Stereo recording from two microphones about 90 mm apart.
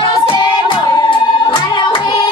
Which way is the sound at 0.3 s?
60° left (ahead or behind).